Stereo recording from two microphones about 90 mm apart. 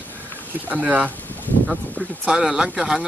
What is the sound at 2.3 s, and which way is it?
Speech, 10° right (ahead or behind).